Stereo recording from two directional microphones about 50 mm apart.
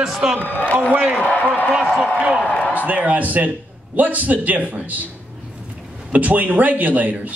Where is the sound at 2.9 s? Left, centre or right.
Right.